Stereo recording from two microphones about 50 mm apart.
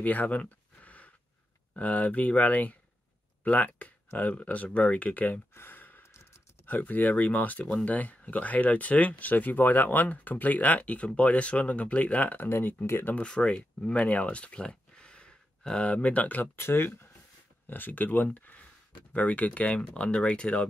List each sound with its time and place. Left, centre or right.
0.0 s a sound: left
1.7 s speech: left
5.5 s a sound: left
6.6 s speech: left
12.4 s speech: left
13.2 s speech: centre
16.5 s speech: left
17.6 s speech: left